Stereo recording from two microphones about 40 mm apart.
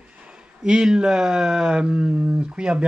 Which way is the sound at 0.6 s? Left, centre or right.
Centre.